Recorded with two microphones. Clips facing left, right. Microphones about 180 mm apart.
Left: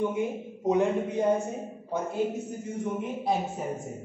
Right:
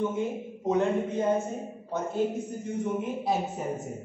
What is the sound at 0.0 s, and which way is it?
A woman's voice, 15° left (ahead or behind).